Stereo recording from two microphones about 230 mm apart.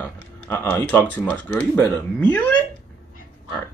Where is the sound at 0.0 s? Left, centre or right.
Centre.